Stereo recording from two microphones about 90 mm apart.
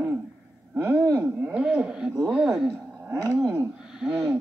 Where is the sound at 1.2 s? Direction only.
15° right (ahead or behind).